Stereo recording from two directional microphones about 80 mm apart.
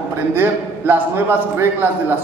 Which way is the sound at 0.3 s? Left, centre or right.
Right.